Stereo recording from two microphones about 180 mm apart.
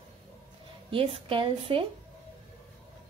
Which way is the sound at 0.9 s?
30° right (ahead or behind).